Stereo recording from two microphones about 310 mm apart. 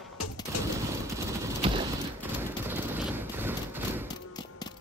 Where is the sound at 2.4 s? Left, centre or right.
Centre.